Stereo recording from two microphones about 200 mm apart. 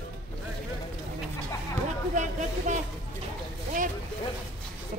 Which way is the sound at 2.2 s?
35° right (ahead or behind).